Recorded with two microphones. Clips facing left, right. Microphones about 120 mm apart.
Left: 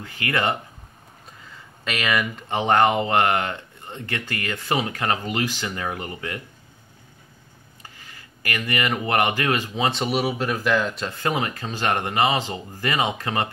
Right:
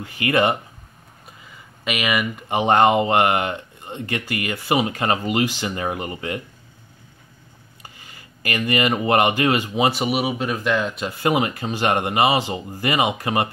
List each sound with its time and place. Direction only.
0.0 s speech: 15° right (ahead or behind)
7.8 s speech: 15° right (ahead or behind)
11.2 s speech: 15° right (ahead or behind)